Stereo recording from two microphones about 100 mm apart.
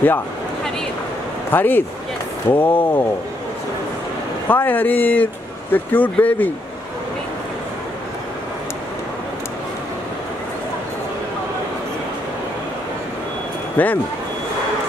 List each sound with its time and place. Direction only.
1.5 s speech: 20° left (ahead or behind)
4.5 s speech: 20° left (ahead or behind)
13.8 s speech: 15° left (ahead or behind)